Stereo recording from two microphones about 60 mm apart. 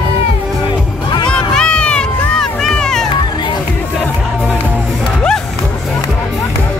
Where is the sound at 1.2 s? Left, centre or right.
Centre.